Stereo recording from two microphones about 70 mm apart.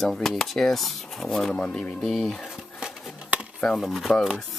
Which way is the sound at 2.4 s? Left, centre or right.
Centre.